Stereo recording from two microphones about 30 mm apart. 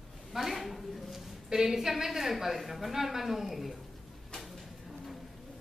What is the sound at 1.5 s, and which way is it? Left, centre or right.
A woman's voice, centre.